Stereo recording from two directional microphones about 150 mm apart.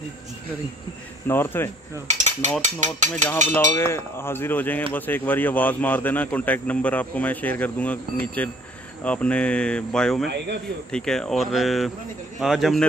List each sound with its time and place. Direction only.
1.2 s speech: 15° left (ahead or behind)
2.0 s mechanisms: 50° right (ahead or behind)
2.6 s speech: 55° right (ahead or behind)
3.4 s speech: 15° left (ahead or behind)